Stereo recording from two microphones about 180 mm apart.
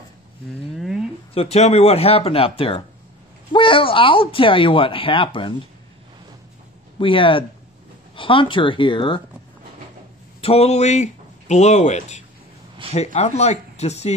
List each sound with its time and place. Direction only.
0.7 s a sound: 5° right (ahead or behind)
1.3 s speech: 35° left (ahead or behind)
7.0 s speech: 30° left (ahead or behind)
10.4 s a man's voice: 35° left (ahead or behind)